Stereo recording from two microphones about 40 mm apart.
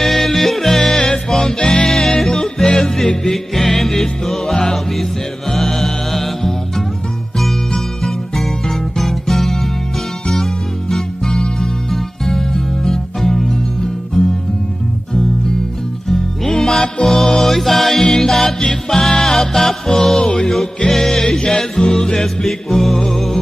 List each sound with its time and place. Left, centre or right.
0.0 s music: centre
3.3 s music: centre
16.1 s music: centre